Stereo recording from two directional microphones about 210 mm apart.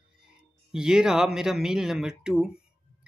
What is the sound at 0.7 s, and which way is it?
Speech, 5° right (ahead or behind).